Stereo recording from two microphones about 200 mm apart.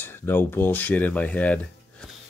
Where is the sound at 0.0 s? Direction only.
10° left (ahead or behind).